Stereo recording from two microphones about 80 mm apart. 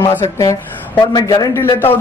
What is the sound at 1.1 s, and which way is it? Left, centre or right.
Speech, left.